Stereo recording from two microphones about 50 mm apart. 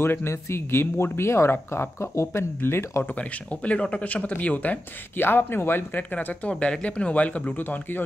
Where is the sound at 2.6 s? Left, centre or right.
Left.